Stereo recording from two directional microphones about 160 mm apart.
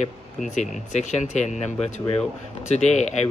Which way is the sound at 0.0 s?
50° left (ahead or behind).